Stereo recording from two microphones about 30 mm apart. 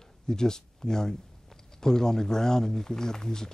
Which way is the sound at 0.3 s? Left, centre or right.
Left.